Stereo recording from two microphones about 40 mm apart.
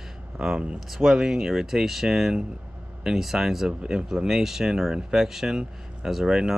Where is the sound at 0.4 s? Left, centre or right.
Centre.